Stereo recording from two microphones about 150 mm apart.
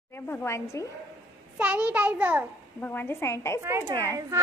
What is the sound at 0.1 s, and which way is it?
Speech, 15° left (ahead or behind).